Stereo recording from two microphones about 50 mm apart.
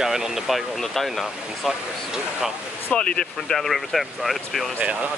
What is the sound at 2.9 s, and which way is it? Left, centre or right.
Speech, centre.